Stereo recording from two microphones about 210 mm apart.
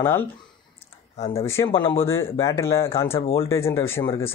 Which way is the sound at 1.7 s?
25° left (ahead or behind).